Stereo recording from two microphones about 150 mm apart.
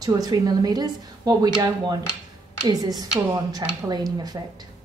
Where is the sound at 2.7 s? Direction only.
25° right (ahead or behind).